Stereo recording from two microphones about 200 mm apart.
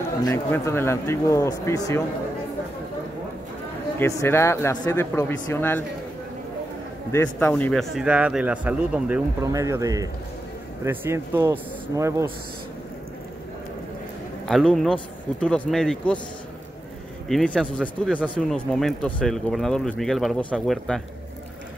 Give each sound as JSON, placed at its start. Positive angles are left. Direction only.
{"t": 0.2, "sound": "speech", "side_deg": 15}
{"t": 4.0, "sound": "speech", "side_deg": 15}
{"t": 7.1, "sound": "speech", "side_deg": 10}
{"t": 14.5, "sound": "speech", "side_deg": 0}
{"t": 17.3, "sound": "speech", "side_deg": 0}